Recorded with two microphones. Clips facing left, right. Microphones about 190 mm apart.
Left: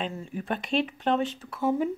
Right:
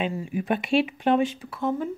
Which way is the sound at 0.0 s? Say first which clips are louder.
Right 5 dB; 10° right (ahead or behind).